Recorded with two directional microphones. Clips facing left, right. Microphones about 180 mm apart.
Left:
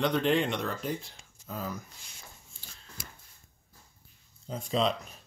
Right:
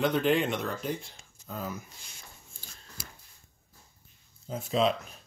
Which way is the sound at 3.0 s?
30° right (ahead or behind).